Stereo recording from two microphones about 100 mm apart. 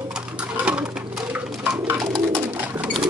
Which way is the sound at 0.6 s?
10° right (ahead or behind).